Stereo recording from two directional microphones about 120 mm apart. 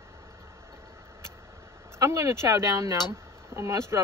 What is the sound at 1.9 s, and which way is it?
Speech, 25° right (ahead or behind).